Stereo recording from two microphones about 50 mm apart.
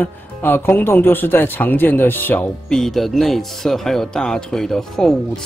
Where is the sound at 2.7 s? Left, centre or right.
Centre.